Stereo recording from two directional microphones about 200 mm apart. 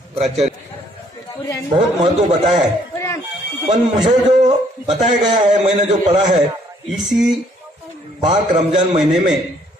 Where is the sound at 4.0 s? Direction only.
35° right (ahead or behind).